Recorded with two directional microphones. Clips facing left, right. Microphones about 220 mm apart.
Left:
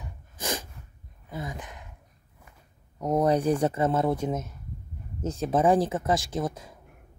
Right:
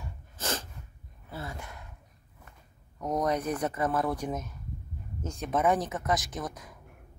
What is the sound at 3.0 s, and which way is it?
Speech, 25° left (ahead or behind).